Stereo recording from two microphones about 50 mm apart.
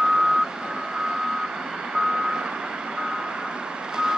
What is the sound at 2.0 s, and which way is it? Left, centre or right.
Reversing beeps, centre.